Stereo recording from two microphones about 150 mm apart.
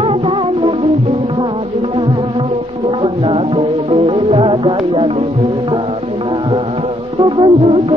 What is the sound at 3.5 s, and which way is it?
Music, 40° right (ahead or behind).